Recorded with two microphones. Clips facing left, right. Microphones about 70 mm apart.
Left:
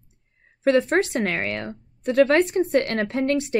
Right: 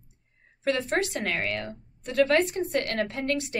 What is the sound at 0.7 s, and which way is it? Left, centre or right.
Speech, left.